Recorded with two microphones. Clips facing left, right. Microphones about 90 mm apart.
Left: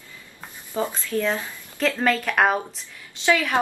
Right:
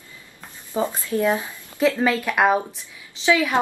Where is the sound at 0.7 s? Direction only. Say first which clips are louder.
Right 2 dB; 20° right (ahead or behind).